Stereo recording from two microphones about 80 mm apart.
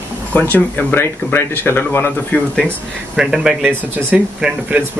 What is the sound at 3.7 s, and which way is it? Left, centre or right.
Speech, right.